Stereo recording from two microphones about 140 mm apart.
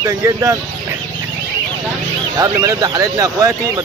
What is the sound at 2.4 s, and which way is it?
Speech, 25° right (ahead or behind).